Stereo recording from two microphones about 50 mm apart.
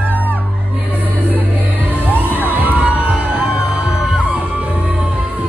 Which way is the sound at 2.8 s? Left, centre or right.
Right.